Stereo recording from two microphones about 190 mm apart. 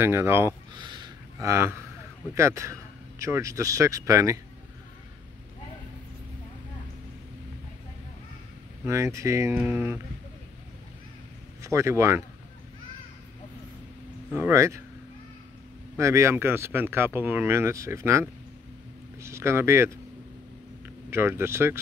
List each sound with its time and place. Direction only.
0.0 s speech: 10° right (ahead or behind)
0.7 s a sound: 25° right (ahead or behind)
2.3 s speech: 15° right (ahead or behind)
8.8 s speech: 15° right (ahead or behind)
11.6 s speech: 15° right (ahead or behind)
14.3 s speech: 10° right (ahead or behind)
16.0 s speech: 15° right (ahead or behind)
21.1 s speech: 15° right (ahead or behind)